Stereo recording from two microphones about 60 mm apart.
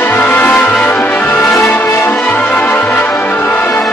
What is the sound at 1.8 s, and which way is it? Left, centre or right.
Music, left.